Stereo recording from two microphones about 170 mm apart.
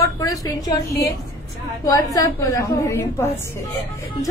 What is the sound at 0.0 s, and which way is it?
A woman's voice, 20° left (ahead or behind).